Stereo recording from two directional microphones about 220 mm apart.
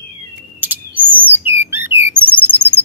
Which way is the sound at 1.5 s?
10° right (ahead or behind).